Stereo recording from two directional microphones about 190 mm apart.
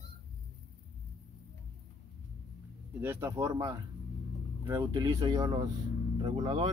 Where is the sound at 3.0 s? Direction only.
10° right (ahead or behind).